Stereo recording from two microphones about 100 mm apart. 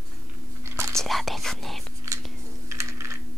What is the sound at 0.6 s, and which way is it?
Whispering, 25° right (ahead or behind).